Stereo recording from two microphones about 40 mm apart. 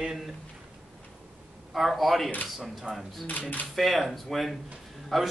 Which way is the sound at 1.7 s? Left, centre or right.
Centre.